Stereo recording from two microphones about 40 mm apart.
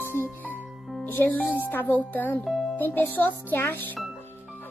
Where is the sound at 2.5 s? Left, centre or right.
Centre.